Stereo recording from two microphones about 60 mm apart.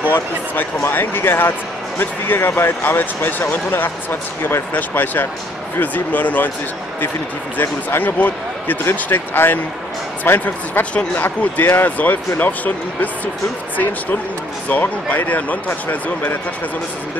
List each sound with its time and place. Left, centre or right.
0.8 s speech: left
8.0 s speech: left
14.7 s speech: left